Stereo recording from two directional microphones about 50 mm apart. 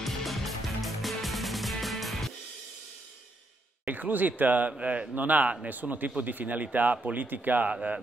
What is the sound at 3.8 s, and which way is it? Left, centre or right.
Speech, right.